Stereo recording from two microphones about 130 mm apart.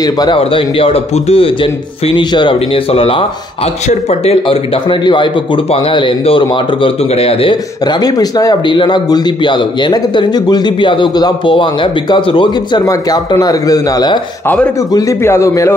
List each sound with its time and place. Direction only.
0.0 s a man's voice: 30° left (ahead or behind)
0.4 s a man's voice: 45° left (ahead or behind)
7.8 s a man's voice: 30° left (ahead or behind)
12.8 s a man's voice: 30° left (ahead or behind)